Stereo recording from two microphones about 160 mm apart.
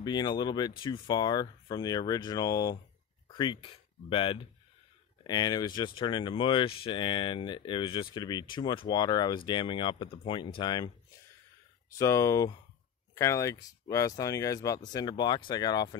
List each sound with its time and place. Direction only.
0.0 s speech: 25° left (ahead or behind)
12.0 s speech: 20° left (ahead or behind)